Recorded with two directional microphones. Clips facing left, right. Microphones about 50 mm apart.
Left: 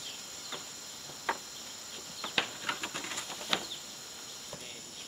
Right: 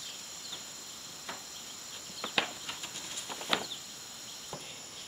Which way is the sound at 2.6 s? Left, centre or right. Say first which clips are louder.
Left 6 dB; left.